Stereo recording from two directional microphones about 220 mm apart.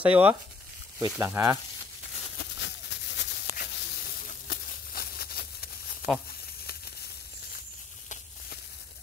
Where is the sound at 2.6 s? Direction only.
50° left (ahead or behind).